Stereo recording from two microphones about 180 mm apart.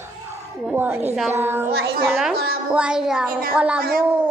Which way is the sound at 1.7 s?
60° right (ahead or behind).